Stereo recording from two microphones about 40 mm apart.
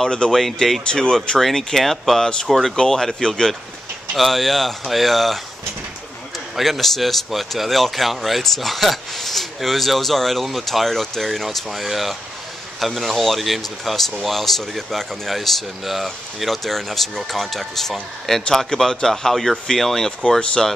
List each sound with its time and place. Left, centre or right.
0.3 s speech: centre
1.1 s speech: centre
1.4 s a man's voice: centre
4.2 s speech: centre
6.5 s speech: centre
11.4 s a man's voice: centre
20.1 s speech: left